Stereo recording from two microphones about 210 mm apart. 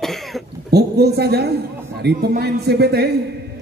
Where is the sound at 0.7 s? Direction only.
50° right (ahead or behind).